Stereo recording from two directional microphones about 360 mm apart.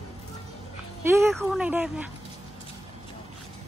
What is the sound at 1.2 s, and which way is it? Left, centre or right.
Speech, centre.